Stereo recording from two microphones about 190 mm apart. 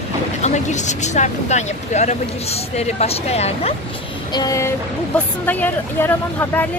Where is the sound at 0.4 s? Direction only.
40° left (ahead or behind).